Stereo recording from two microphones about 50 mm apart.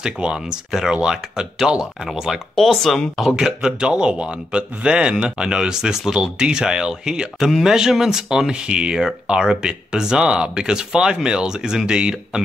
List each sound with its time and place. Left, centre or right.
0.0 s speech: centre
0.7 s speech: centre
2.5 s speech: centre
3.3 s speech: centre